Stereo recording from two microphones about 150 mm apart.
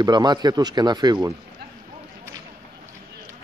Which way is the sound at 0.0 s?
30° right (ahead or behind).